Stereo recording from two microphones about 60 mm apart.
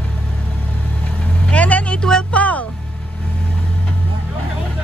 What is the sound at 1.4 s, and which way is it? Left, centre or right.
Speech, left.